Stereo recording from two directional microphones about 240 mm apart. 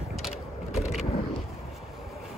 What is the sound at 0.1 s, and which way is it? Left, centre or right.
Mechanisms, centre.